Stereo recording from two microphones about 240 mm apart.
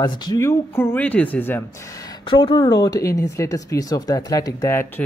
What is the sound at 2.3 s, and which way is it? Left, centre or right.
Speech, left.